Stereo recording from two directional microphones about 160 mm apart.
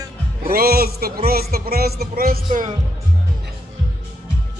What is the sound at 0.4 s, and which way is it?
A man's voice, 65° right (ahead or behind).